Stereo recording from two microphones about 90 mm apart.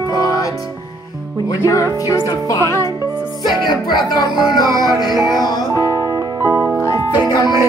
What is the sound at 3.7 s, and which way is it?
Music, 50° left (ahead or behind).